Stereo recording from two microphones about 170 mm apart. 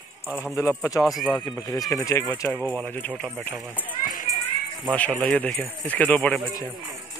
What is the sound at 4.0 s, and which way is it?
Children playing, 55° left (ahead or behind).